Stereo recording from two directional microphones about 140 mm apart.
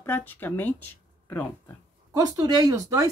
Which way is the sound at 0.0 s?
15° left (ahead or behind).